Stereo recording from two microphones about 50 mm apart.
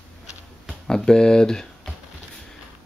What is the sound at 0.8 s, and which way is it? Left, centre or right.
Speech, centre.